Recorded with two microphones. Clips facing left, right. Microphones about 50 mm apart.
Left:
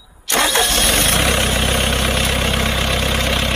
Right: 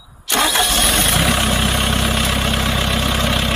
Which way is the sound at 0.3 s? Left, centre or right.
Left.